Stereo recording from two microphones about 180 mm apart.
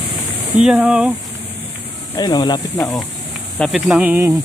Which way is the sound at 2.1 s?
20° left (ahead or behind).